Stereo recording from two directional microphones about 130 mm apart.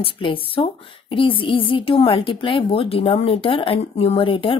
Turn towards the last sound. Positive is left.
turn(degrees=40)  # may be behind; listen again after turning